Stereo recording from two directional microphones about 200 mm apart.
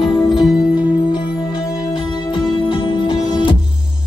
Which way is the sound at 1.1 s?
25° left (ahead or behind).